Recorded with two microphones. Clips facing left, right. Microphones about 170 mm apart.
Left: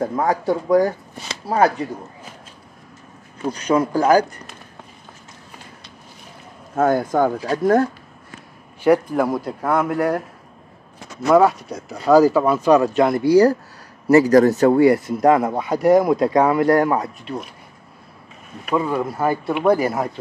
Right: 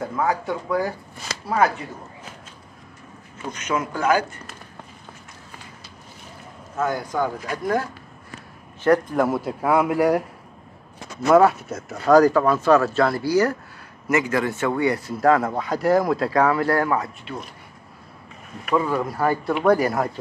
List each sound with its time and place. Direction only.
0.0 s speech: 40° left (ahead or behind)
3.4 s speech: 35° left (ahead or behind)
6.7 s speech: 50° left (ahead or behind)
8.8 s speech: 10° left (ahead or behind)
9.2 s speech: 5° right (ahead or behind)
11.2 s speech: centre (ahead or behind); by 17.1 s 20° left (ahead or behind)
18.7 s speech: 20° left (ahead or behind)